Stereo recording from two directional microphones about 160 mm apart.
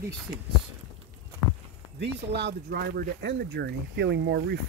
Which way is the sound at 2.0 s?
90° right.